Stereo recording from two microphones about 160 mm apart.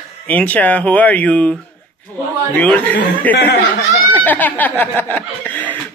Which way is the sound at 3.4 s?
90° left.